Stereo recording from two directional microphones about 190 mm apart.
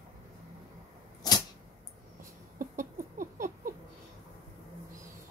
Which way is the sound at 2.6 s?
45° right (ahead or behind).